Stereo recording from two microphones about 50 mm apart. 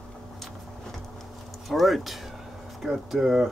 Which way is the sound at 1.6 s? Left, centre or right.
Centre.